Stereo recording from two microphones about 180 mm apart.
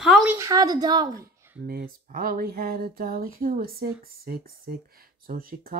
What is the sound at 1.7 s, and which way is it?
Speech, 55° right (ahead or behind).